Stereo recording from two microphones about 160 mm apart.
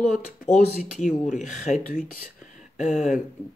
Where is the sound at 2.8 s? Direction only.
5° right (ahead or behind).